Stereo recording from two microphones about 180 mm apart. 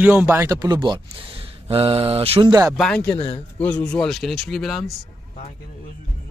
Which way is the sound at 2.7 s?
5° left (ahead or behind).